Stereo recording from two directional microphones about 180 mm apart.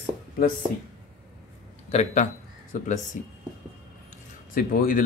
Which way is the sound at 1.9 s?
40° left (ahead or behind).